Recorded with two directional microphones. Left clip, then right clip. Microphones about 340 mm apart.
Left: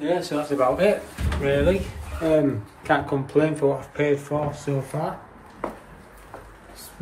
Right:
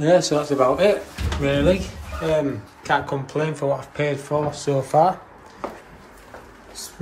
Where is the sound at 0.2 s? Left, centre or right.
Centre.